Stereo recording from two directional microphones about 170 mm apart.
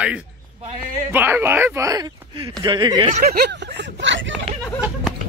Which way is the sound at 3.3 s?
75° right (ahead or behind).